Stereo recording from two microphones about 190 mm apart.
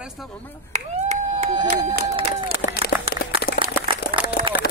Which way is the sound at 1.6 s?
20° right (ahead or behind).